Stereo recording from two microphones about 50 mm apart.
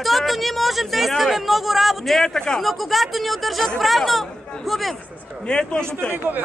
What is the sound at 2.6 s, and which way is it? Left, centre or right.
Speech, centre.